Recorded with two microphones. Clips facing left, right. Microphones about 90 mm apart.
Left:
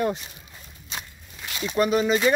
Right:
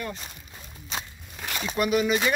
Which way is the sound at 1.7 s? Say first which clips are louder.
Left 3 dB; 30° left (ahead or behind).